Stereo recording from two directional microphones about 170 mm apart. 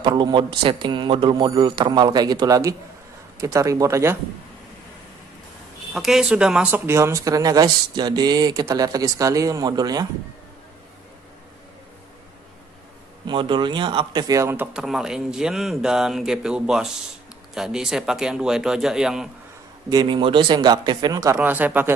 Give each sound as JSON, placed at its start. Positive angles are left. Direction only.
{"t": 0.0, "sound": "speech", "side_deg": -25}
{"t": 5.9, "sound": "speech", "side_deg": 0}
{"t": 13.3, "sound": "speech", "side_deg": -30}
{"t": 19.9, "sound": "speech", "side_deg": -25}
{"t": 21.4, "sound": "speech", "side_deg": -10}